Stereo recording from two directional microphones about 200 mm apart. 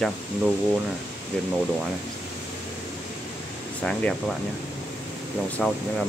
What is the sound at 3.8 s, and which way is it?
Speech, 5° left (ahead or behind).